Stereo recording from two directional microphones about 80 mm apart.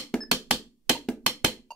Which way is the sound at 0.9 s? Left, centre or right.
Centre.